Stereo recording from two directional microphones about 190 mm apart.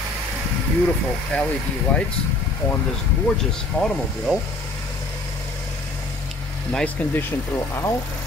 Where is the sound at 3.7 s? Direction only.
5° left (ahead or behind).